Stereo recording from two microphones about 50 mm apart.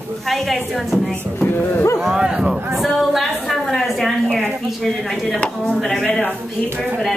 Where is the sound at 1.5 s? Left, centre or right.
Left.